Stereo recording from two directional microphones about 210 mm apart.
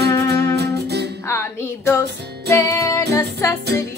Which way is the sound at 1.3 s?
10° left (ahead or behind).